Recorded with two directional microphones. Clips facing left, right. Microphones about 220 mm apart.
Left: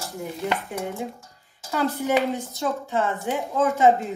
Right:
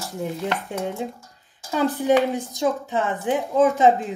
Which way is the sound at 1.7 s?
15° right (ahead or behind).